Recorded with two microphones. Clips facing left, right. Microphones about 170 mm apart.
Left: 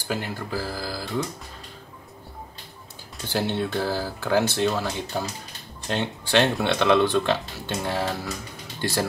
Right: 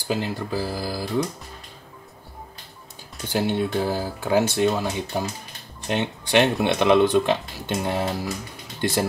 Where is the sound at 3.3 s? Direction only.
15° right (ahead or behind).